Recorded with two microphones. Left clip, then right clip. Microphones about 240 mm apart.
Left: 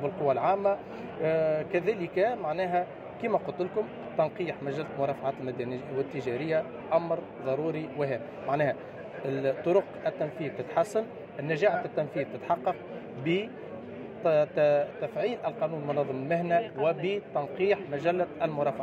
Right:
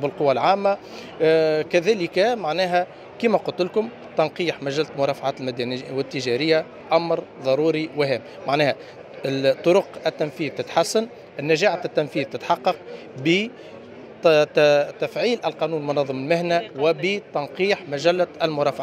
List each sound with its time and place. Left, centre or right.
0.0 s a man's voice: right